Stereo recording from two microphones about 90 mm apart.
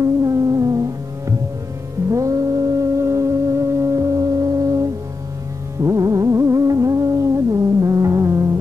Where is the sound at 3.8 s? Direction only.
35° right (ahead or behind).